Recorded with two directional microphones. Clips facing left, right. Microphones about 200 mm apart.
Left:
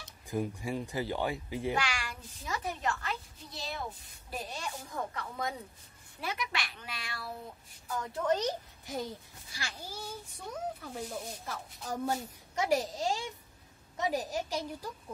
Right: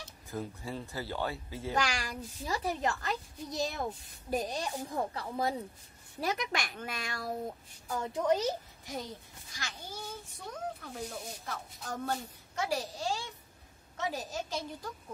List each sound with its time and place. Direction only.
0.3 s a child's voice: 15° left (ahead or behind)
1.8 s a child's voice: 40° right (ahead or behind)
6.2 s speech: 45° right (ahead or behind)
8.1 s a child's voice: 10° right (ahead or behind)
9.5 s a child's voice: 10° left (ahead or behind)
12.7 s a child's voice: 20° left (ahead or behind)